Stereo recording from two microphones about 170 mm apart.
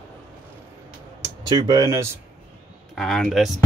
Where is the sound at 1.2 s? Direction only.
25° right (ahead or behind).